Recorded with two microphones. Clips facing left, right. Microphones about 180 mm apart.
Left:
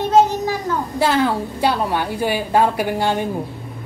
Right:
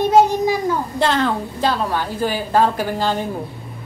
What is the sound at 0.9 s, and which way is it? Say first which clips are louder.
A woman's voice: left 3 dB; 10° left (ahead or behind).